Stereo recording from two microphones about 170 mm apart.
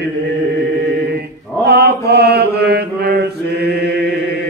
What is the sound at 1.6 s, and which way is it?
Mantra, 70° right (ahead or behind).